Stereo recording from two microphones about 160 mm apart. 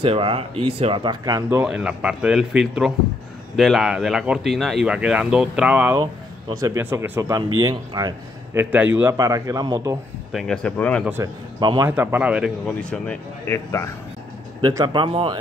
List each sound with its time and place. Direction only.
0.0 s speech: 35° right (ahead or behind)
1.6 s speech: 5° right (ahead or behind)
6.5 s speech: 20° right (ahead or behind)
8.5 s a man's voice: 10° right (ahead or behind)
9.1 s speech: 20° right (ahead or behind)
10.3 s speech: 5° left (ahead or behind)
11.6 s speech: 25° right (ahead or behind)
11.9 s speech: 10° right (ahead or behind); by 13.8 s 15° left (ahead or behind)
14.6 s speech: 25° right (ahead or behind)